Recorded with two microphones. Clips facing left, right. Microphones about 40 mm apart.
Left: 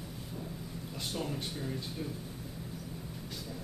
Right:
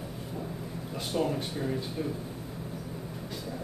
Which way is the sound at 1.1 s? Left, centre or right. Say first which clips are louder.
Right 8 dB; centre.